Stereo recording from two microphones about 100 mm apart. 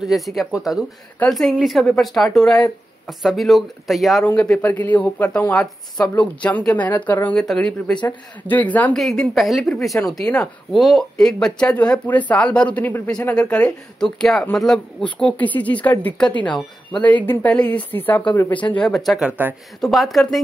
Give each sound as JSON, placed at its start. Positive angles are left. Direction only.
{"t": 0.0, "sound": "speech", "side_deg": 0}
{"t": 4.4, "sound": "speech", "side_deg": 15}
{"t": 8.9, "sound": "speech", "side_deg": 5}
{"t": 18.8, "sound": "speech", "side_deg": 5}
{"t": 19.2, "sound": "speech", "side_deg": -20}
{"t": 19.8, "sound": "speech", "side_deg": 0}